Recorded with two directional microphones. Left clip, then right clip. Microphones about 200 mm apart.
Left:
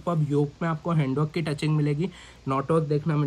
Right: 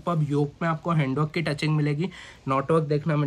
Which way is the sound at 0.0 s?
10° left (ahead or behind).